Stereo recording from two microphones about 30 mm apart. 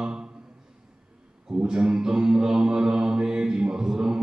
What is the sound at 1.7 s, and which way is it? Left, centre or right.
Mantra, right.